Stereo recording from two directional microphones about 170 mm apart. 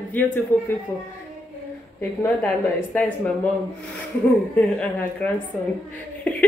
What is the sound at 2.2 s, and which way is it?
Speech, 10° left (ahead or behind).